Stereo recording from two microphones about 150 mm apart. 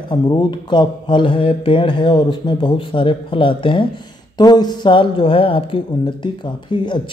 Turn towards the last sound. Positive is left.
turn(degrees=30)  # may be behind; listen again after turning